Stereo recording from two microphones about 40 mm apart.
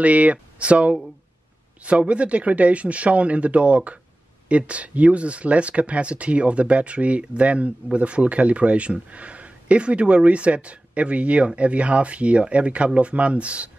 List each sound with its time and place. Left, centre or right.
0.0 s speech: right